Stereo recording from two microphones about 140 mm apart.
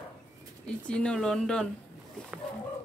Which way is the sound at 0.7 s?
5° left (ahead or behind).